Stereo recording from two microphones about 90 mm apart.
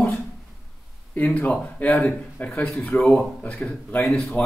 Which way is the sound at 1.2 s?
15° left (ahead or behind).